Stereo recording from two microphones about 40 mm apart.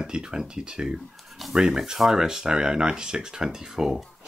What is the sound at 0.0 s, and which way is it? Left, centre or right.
Speech, right.